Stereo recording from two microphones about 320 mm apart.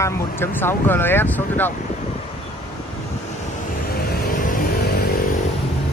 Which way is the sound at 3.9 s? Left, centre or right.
Left.